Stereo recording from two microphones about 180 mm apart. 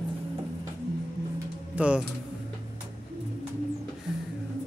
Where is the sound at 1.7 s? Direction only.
5° right (ahead or behind).